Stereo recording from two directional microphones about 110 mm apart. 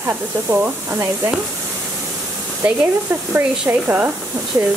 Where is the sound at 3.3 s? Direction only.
15° right (ahead or behind).